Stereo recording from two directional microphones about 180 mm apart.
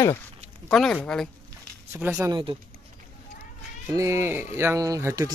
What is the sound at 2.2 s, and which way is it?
Speech, 25° right (ahead or behind).